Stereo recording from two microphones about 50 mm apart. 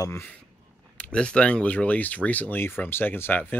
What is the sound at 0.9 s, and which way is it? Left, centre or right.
Speech, left.